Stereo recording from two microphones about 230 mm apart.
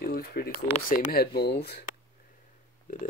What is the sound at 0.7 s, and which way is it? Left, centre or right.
Speech, left.